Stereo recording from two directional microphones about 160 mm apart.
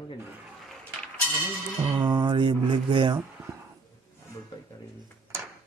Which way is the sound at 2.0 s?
30° right (ahead or behind).